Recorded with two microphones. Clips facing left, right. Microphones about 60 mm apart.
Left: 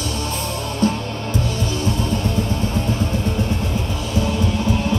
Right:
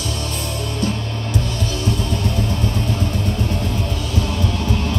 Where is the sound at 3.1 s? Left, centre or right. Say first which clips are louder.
Left 1 dB; left.